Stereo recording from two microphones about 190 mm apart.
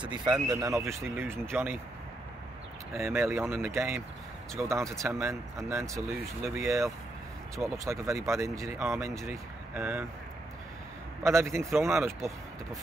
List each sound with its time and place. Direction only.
0.0 s speech: 25° right (ahead or behind)
2.9 s speech: 15° right (ahead or behind)
11.2 s speech: 15° right (ahead or behind)